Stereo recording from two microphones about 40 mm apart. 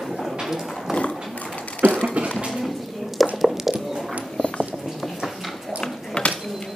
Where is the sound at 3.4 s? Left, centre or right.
Centre.